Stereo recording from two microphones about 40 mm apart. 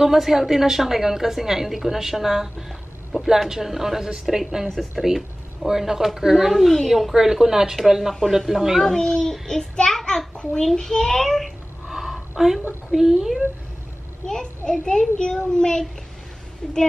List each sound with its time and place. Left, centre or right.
0.0 s a woman's voice: centre
4.6 s speech: centre
5.7 s a woman's voice: centre
6.3 s a woman's voice: centre
8.8 s a child's voice: centre
9.8 s a sound: centre
10.3 s a sound: left
10.8 s a child's voice: centre
11.9 s a sound: centre
12.9 s a woman's voice: centre
14.2 s a child's voice: centre